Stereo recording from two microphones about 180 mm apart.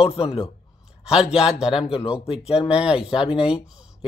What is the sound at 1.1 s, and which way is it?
Speech, 5° right (ahead or behind).